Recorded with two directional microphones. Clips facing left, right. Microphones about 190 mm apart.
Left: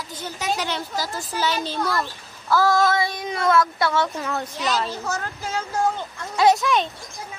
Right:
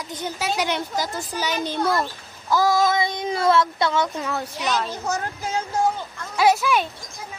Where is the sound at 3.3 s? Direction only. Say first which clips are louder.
Right 1 dB; 30° right (ahead or behind).